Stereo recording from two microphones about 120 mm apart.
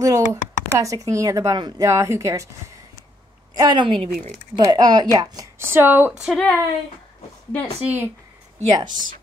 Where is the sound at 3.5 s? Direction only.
35° right (ahead or behind).